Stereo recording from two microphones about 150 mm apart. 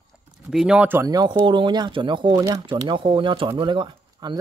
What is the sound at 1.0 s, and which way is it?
Speech, 25° right (ahead or behind).